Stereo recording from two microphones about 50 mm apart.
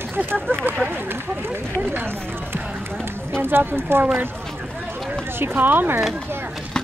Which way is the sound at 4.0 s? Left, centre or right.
Right.